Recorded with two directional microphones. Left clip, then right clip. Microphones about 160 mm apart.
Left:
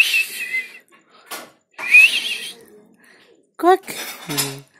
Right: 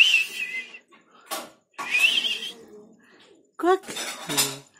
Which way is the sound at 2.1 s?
30° right (ahead or behind).